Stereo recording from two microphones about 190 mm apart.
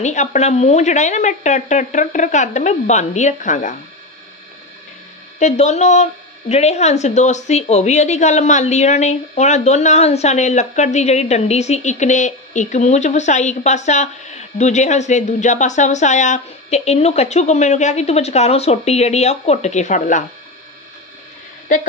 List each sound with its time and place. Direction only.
0.0 s a woman's voice: 40° left (ahead or behind)
5.4 s a woman's voice: 35° left (ahead or behind)